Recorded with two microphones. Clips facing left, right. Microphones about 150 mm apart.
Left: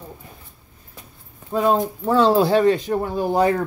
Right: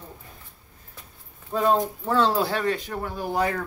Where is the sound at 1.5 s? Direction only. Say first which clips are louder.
Left 3 dB; 10° left (ahead or behind); by 3.6 s 25° left (ahead or behind).